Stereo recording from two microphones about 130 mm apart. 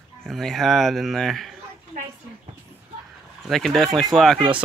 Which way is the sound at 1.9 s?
85° right.